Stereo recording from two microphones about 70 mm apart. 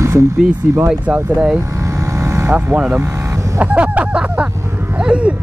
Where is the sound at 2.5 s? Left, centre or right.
Right.